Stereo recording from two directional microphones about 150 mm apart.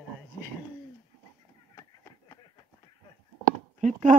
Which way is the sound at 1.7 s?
20° left (ahead or behind).